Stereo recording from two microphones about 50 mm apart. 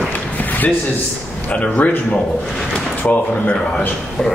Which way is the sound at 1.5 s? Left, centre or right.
Left.